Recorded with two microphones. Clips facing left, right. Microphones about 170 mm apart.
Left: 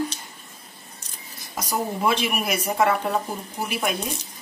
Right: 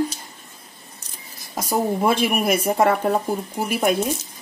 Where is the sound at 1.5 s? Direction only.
45° right (ahead or behind).